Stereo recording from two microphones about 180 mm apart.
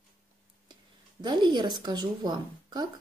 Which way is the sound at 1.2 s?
25° right (ahead or behind).